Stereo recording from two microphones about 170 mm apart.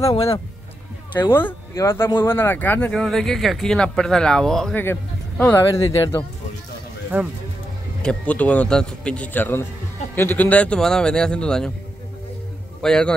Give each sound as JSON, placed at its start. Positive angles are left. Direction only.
{"t": 1.1, "sound": "speech", "side_deg": 10}
{"t": 5.4, "sound": "speech", "side_deg": 15}
{"t": 8.0, "sound": "speech", "side_deg": 5}
{"t": 12.8, "sound": "speech", "side_deg": 5}